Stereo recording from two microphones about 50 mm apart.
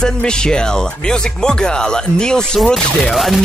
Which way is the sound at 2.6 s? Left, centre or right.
Centre.